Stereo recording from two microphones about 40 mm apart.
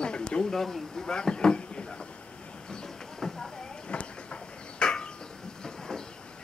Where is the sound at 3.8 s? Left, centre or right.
Left.